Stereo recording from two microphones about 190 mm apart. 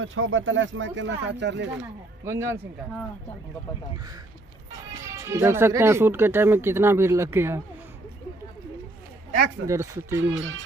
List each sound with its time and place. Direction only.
0.0 s speech: 90° right; by 1.7 s 65° right (ahead or behind)
2.2 s speech: 15° right (ahead or behind)
5.0 s speech: 15° right (ahead or behind)
9.7 s speech: 15° right (ahead or behind)
10.3 s speech: 80° right